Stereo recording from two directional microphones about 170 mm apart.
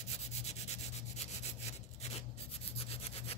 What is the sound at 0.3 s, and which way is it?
Rub, 40° left (ahead or behind).